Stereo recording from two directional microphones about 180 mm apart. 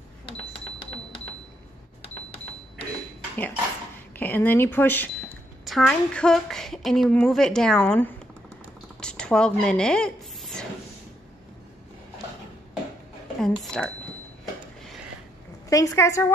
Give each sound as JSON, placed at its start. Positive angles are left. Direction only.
{"t": 4.2, "sound": "speech", "side_deg": 10}
{"t": 9.0, "sound": "a sound", "side_deg": 5}
{"t": 13.4, "sound": "speech", "side_deg": 5}
{"t": 15.7, "sound": "speech", "side_deg": 20}